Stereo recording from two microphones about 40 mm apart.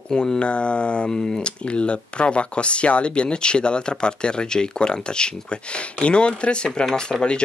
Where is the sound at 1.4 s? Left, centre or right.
Left.